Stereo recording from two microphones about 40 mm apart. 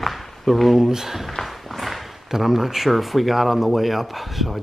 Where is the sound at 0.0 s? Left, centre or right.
Centre.